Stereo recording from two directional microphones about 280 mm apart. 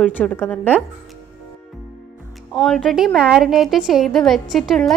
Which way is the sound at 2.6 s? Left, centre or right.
Centre.